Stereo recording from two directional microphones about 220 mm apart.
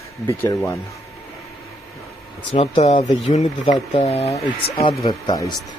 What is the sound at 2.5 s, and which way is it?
Speech, 25° left (ahead or behind).